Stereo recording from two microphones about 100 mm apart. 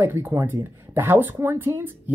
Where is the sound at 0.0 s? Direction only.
25° right (ahead or behind).